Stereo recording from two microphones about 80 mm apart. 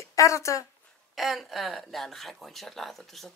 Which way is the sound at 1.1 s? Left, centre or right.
Centre.